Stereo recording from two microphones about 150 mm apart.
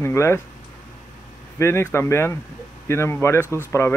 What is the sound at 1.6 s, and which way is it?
Speech, 15° left (ahead or behind).